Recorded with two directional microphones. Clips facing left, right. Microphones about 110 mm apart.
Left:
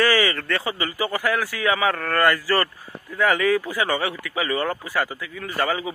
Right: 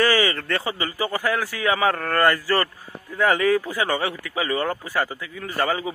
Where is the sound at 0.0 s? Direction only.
30° right (ahead or behind).